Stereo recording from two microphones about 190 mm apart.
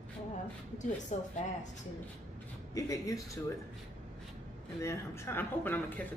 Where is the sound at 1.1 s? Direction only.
40° left (ahead or behind).